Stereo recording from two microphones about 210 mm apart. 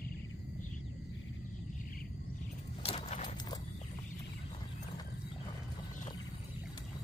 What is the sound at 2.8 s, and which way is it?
Keys jangling, 35° left (ahead or behind).